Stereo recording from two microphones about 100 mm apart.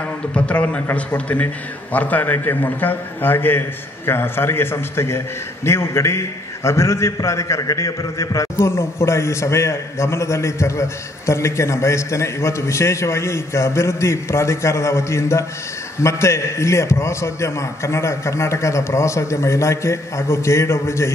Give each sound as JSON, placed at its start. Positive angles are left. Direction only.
{"t": 0.3, "sound": "a man's voice", "side_deg": 15}